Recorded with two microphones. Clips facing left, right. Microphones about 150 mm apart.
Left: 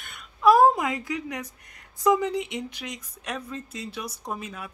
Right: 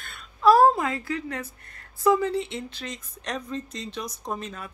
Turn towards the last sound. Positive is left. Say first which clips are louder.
# right 1 dB
turn(degrees=10)  # may be behind; listen again after turning